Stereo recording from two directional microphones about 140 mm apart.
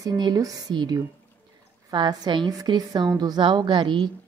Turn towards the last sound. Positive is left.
turn(degrees=-35)  # may be behind; listen again after turning